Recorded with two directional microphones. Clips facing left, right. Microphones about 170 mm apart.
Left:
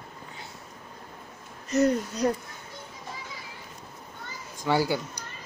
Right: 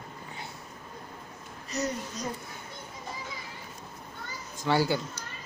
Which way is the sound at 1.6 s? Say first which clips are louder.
Left 9 dB; 55° left (ahead or behind).